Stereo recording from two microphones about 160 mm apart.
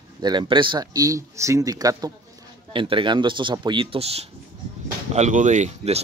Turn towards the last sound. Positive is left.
turn(degrees=-45)  # may be behind; listen again after turning